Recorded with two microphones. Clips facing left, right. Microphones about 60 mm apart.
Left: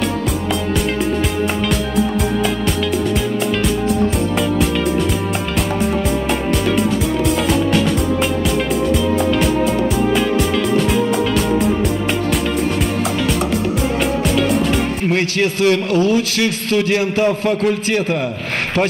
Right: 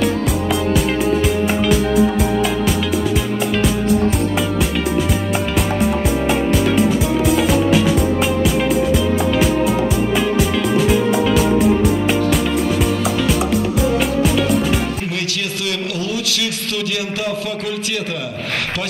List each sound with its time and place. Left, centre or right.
7.4 s music: centre
15.0 s a man's voice: left